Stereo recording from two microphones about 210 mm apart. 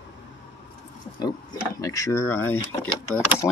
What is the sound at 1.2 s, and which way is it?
Speech, 15° left (ahead or behind).